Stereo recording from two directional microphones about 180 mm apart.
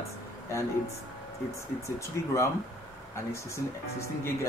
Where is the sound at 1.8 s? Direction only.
15° left (ahead or behind).